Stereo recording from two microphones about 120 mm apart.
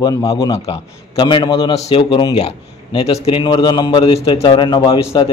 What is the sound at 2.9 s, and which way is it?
Speech, 55° left (ahead or behind).